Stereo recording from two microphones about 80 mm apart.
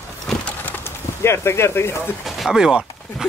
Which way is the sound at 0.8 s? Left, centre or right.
Left.